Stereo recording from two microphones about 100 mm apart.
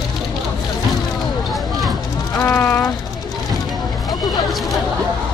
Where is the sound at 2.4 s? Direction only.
25° left (ahead or behind).